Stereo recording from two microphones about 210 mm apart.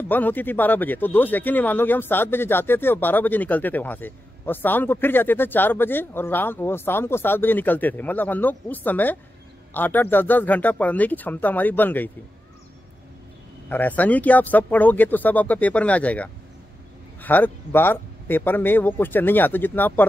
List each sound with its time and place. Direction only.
0.1 s speech: 10° left (ahead or behind)
13.7 s speech: 10° left (ahead or behind)